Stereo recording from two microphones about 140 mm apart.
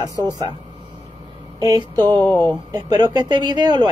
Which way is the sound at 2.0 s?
15° left (ahead or behind).